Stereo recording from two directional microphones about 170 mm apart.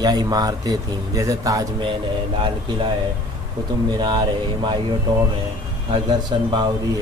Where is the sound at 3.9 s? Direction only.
25° right (ahead or behind).